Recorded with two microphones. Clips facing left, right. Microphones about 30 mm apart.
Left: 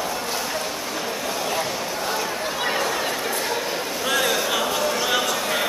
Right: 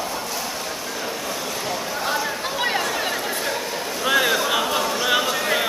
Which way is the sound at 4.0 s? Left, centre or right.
Centre.